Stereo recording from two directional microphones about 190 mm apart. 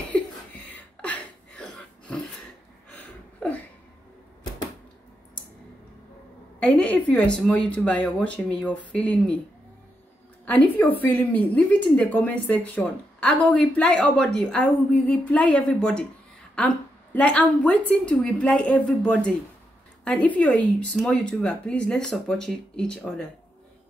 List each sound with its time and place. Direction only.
0.1 s a sound: 5° left (ahead or behind)
6.6 s speech: 5° left (ahead or behind)
10.4 s a woman's voice: 10° left (ahead or behind)